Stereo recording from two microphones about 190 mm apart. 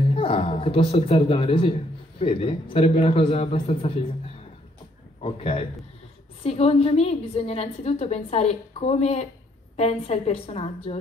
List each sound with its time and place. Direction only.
0.1 s a woman's voice: 30° left (ahead or behind)
5.2 s a woman's voice: 30° left (ahead or behind)